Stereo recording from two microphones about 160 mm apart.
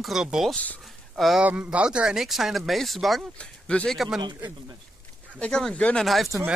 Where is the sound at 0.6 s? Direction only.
10° left (ahead or behind).